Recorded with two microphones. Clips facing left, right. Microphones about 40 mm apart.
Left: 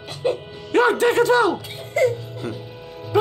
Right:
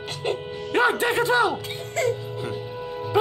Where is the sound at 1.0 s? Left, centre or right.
Centre.